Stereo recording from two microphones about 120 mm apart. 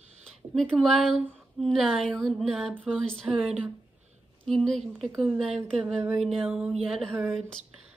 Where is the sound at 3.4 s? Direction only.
10° right (ahead or behind).